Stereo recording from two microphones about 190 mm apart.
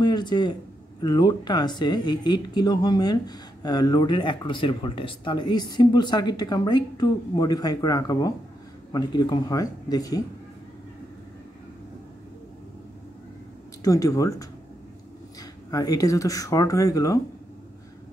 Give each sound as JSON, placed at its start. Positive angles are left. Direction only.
{"t": 0.0, "sound": "speech", "side_deg": 25}
{"t": 13.8, "sound": "speech", "side_deg": 15}
{"t": 15.7, "sound": "speech", "side_deg": 20}